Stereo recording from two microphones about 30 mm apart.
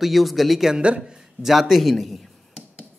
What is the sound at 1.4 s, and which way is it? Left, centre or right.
Speech, centre.